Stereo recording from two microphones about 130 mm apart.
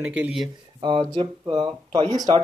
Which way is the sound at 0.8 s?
40° right (ahead or behind).